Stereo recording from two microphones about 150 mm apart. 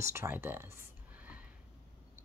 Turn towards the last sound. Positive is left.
turn(degrees=-10)  # may be behind; listen again after turning